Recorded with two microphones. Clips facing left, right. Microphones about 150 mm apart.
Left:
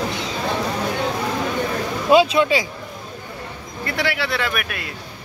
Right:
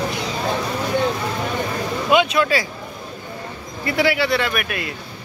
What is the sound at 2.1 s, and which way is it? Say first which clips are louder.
Speech: left 3 dB; 30° left (ahead or behind).